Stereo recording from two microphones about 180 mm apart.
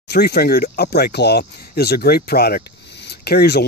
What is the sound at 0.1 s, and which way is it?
Speech, 60° left (ahead or behind).